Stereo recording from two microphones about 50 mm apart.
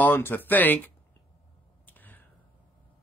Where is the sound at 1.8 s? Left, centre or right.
Left.